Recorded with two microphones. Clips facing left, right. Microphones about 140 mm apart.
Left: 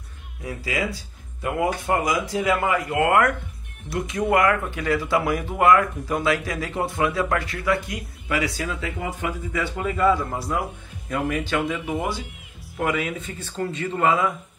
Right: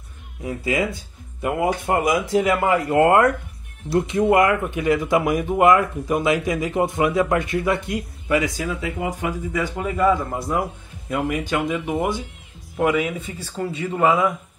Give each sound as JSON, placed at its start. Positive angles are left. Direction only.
{"t": 0.4, "sound": "speech", "side_deg": -25}
{"t": 12.7, "sound": "speech", "side_deg": -5}